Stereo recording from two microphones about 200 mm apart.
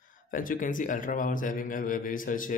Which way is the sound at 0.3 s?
45° left (ahead or behind).